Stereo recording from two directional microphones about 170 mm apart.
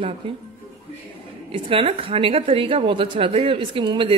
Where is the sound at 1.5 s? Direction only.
30° right (ahead or behind).